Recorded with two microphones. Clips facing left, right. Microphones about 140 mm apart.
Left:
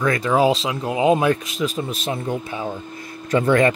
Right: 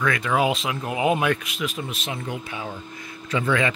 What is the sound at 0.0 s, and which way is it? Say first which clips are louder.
Speech: left 4 dB; 35° left (ahead or behind).